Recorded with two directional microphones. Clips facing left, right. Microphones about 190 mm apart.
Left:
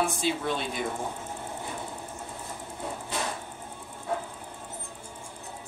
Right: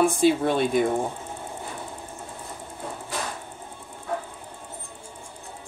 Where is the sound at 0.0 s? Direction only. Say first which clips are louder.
Right 8 dB; 55° right (ahead or behind).